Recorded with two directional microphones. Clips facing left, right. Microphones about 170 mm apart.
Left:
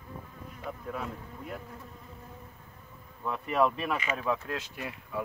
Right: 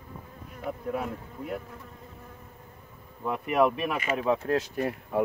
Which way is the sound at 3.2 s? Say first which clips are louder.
Right 3 dB; 15° right (ahead or behind).